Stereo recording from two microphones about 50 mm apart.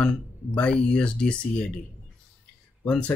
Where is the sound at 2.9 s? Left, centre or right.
Left.